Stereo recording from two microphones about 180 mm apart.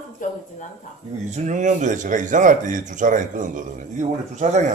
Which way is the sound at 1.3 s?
40° right (ahead or behind).